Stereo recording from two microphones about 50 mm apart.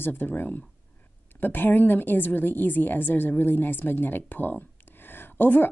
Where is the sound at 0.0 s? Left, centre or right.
Left.